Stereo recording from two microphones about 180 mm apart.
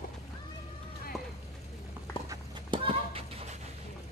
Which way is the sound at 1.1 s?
Centre (ahead or behind).